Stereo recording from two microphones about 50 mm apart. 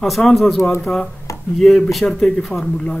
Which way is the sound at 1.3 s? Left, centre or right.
Left.